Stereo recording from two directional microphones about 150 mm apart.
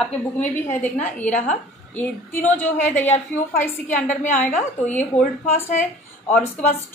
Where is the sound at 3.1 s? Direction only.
55° left (ahead or behind).